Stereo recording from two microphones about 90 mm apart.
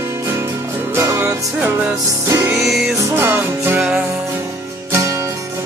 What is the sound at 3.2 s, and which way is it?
Music, 25° right (ahead or behind).